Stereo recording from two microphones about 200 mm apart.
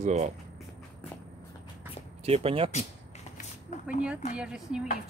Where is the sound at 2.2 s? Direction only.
30° right (ahead or behind).